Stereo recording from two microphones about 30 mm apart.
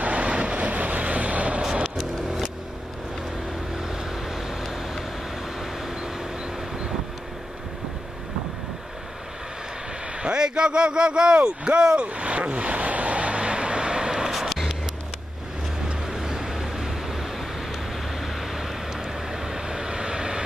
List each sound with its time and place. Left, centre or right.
0.0 s vehicle: right
1.6 s vehicle: right
3.7 s vehicle: centre
10.2 s speech: right
12.1 s vehicle: right
14.5 s a sound: centre
16.1 s vehicle: centre